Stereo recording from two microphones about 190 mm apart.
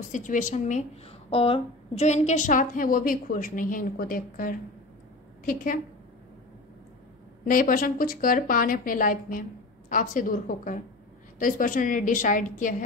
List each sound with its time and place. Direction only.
0.1 s a woman's voice: 40° left (ahead or behind)
7.4 s a woman's voice: 45° left (ahead or behind)